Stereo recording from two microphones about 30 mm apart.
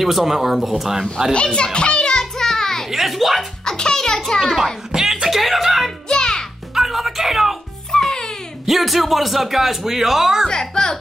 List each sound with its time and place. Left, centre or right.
0.0 s speech: centre
1.3 s children playing: left; by 2.9 s centre
2.9 s a sound: centre
3.6 s a child's voice: left
4.9 s a sound: centre
5.3 s music: centre
6.0 s music: left
6.7 s music: centre
7.9 s music: left
8.6 s speech: centre
10.5 s a child's voice: left